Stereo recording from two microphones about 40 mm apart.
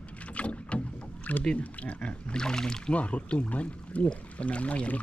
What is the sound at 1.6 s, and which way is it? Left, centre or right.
Speech, left.